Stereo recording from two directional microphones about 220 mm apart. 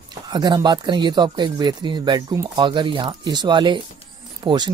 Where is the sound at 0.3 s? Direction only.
20° right (ahead or behind).